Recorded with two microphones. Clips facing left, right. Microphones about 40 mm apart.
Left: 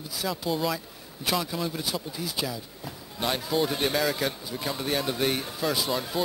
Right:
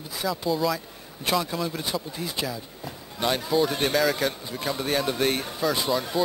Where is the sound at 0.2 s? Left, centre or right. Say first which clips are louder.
Right 3 dB; centre.